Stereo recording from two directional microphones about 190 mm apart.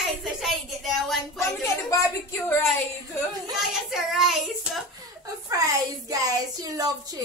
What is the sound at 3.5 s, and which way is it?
Child singing, centre (ahead or behind).